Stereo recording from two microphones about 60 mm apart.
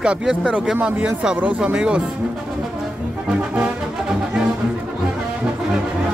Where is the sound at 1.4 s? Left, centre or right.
Right.